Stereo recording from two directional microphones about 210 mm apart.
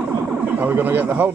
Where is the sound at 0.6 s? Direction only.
10° right (ahead or behind).